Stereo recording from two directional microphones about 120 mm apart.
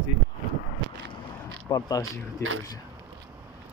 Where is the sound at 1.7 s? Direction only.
30° left (ahead or behind).